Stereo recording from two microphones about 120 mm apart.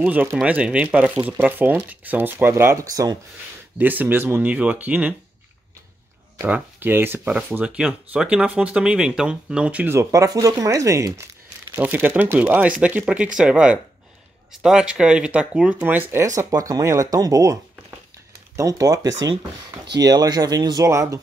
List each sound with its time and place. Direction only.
0.0 s speech: 15° right (ahead or behind); by 3.2 s 30° right (ahead or behind)
3.7 s speech: 15° right (ahead or behind)
6.4 s speech: 15° right (ahead or behind)
9.9 s speech: 30° right (ahead or behind)
11.7 s speech: 15° right (ahead or behind)
16.3 s speech: 30° right (ahead or behind)
18.6 s speech: 30° right (ahead or behind)